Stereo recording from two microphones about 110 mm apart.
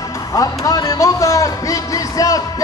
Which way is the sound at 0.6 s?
35° left (ahead or behind).